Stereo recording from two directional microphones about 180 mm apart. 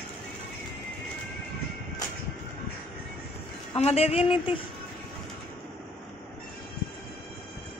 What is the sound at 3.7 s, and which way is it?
Speech, 35° left (ahead or behind).